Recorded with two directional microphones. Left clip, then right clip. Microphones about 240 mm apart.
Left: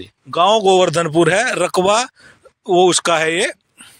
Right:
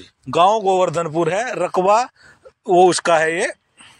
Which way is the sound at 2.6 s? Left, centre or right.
Left.